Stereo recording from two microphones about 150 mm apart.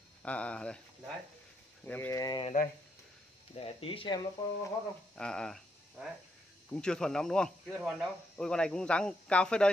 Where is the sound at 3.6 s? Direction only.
40° left (ahead or behind).